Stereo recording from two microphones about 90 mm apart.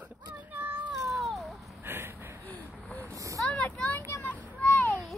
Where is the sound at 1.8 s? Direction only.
25° right (ahead or behind).